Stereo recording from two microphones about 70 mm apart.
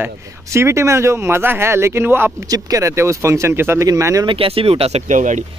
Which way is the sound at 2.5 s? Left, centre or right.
Right.